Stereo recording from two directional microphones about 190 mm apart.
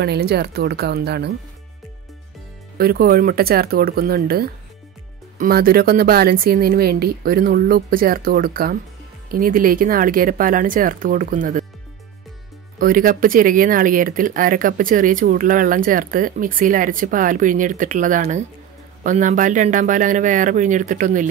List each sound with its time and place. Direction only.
0.0 s speech: 60° right (ahead or behind)
2.8 s speech: 55° right (ahead or behind)
12.7 s speech: 50° right (ahead or behind)